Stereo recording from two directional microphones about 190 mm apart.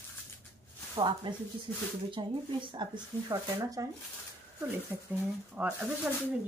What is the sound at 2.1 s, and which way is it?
Speech, 25° right (ahead or behind).